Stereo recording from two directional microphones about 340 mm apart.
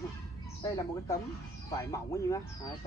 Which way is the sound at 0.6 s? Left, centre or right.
Centre.